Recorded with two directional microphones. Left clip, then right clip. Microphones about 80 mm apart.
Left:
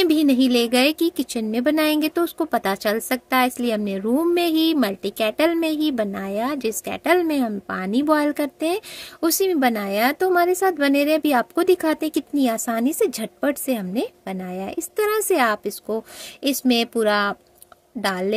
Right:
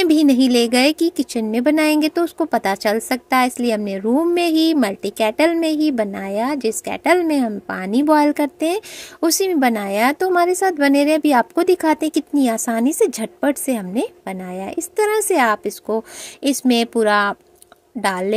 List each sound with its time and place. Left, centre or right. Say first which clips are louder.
0.0 s a woman's voice: right 3 dB; right
4.5 s a woman's voice: right 3 dB; right